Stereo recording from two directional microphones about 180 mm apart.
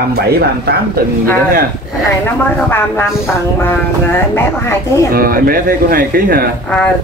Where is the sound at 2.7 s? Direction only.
10° left (ahead or behind).